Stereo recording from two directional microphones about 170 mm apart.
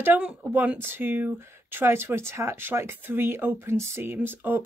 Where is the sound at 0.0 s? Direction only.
10° right (ahead or behind).